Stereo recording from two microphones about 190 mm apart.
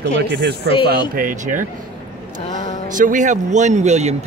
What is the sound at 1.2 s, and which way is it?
Speech, 45° right (ahead or behind).